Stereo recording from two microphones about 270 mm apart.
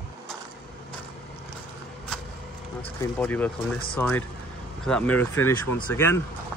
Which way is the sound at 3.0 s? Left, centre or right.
Centre.